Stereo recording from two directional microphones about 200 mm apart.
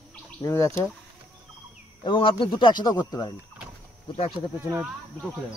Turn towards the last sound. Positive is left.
turn(degrees=-10)  # may be behind; listen again after turning